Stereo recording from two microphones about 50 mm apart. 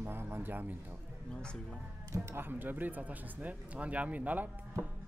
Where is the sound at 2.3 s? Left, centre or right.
Right.